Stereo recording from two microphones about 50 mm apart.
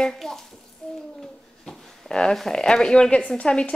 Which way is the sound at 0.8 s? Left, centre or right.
Centre.